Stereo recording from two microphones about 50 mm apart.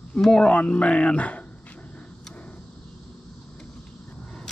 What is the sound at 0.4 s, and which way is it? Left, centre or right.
Speech, left.